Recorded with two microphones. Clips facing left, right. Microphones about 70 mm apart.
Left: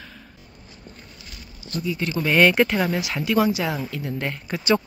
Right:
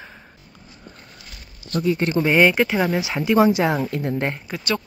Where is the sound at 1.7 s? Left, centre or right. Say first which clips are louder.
Right 6 dB; right.